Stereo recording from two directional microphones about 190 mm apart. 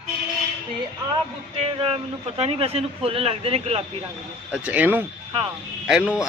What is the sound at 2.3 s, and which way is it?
Speech, 35° right (ahead or behind).